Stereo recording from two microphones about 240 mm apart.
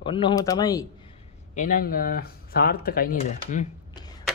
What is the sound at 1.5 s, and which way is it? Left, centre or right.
Speech, left.